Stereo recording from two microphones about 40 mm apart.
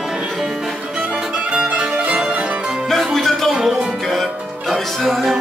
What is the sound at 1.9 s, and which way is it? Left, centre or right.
Music, right.